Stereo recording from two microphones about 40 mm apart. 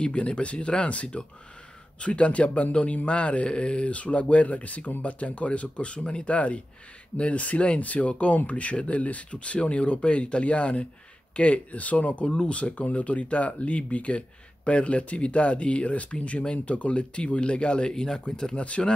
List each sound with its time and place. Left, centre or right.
0.0 s speech: left
6.3 s speech: left
12.3 s speech: left